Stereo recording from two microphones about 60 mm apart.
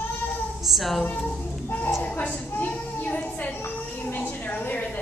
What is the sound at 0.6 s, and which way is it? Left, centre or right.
Speech, centre.